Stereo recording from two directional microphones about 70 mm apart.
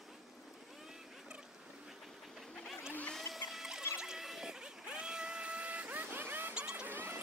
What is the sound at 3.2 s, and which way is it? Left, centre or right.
Music, centre.